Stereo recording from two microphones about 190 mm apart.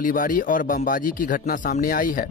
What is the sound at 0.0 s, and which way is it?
Speech, 45° left (ahead or behind).